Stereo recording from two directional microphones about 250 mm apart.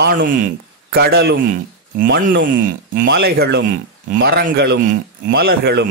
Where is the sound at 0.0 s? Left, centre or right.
Right.